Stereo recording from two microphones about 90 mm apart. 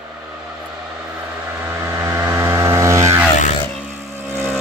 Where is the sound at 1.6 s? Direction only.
30° right (ahead or behind).